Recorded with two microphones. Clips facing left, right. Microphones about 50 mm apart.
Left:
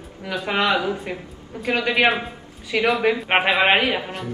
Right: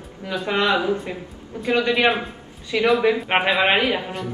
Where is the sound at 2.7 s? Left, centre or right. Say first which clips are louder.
Right 1 dB; left.